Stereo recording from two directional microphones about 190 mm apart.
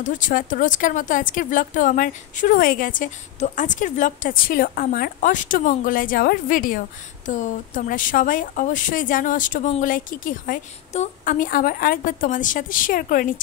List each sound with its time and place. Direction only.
0.0 s speech: 45° left (ahead or behind)